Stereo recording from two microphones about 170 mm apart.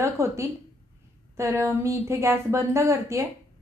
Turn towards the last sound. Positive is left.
turn(degrees=-15)  # may be behind; listen again after turning